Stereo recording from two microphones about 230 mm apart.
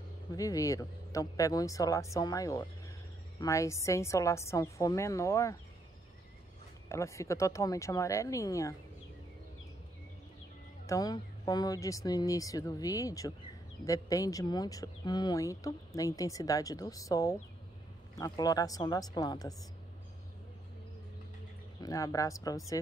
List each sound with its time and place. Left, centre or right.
0.3 s speech: centre
6.9 s speech: centre
10.9 s speech: centre
21.8 s speech: centre